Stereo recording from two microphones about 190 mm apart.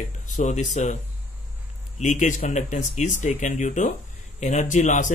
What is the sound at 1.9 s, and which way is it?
Speech, 40° left (ahead or behind).